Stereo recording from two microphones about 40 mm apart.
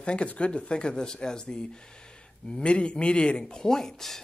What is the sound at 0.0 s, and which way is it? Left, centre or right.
Speech, left.